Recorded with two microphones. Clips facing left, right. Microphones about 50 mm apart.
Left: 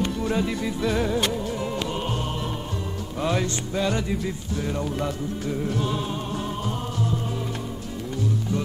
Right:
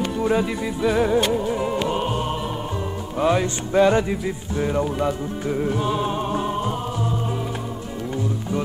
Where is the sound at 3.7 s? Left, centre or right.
Right.